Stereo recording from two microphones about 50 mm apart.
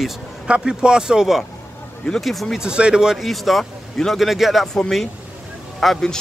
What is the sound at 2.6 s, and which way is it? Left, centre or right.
Speech, centre.